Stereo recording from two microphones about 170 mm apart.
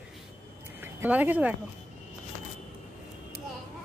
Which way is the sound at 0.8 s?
10° right (ahead or behind).